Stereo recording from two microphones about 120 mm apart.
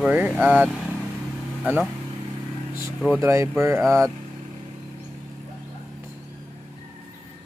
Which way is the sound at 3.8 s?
5° left (ahead or behind).